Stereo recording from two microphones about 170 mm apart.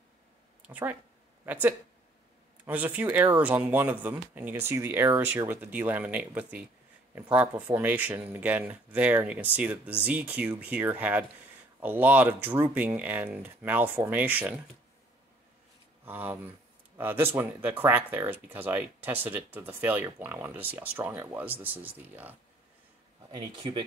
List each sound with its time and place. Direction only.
0.7 s speech: 10° right (ahead or behind)
16.1 s speech: 10° right (ahead or behind)
23.3 s speech: 25° right (ahead or behind)